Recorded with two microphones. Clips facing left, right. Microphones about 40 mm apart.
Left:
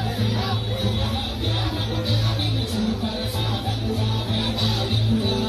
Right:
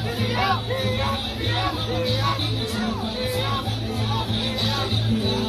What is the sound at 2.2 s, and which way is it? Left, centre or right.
Music, right.